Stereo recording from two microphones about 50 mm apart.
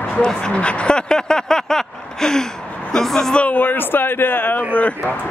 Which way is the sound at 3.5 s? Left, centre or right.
Left.